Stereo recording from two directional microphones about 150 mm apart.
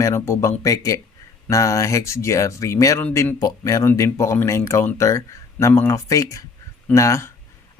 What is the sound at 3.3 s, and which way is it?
Speech, 25° left (ahead or behind).